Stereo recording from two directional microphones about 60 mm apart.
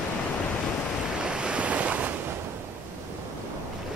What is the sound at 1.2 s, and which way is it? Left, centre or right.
Waves, centre.